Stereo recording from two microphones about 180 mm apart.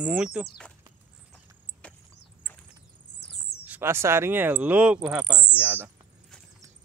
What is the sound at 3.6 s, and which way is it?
Speech, 10° right (ahead or behind).